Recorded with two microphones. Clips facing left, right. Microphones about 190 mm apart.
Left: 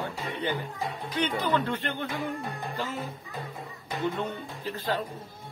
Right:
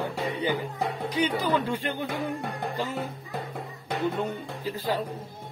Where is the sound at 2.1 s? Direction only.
70° right (ahead or behind).